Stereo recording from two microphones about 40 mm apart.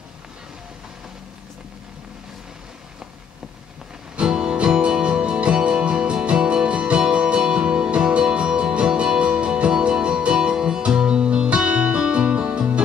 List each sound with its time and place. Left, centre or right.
4.2 s music: centre